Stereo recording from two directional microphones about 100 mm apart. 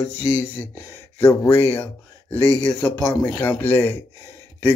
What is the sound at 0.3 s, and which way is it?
Speech, 20° left (ahead or behind).